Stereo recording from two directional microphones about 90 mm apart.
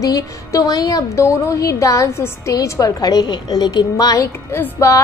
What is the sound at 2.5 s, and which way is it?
A woman's voice, 40° left (ahead or behind).